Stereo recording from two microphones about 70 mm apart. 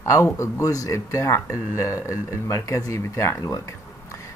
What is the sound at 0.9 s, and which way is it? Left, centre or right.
Speech, left.